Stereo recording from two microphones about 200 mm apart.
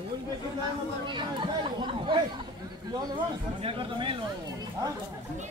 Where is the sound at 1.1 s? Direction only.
25° right (ahead or behind).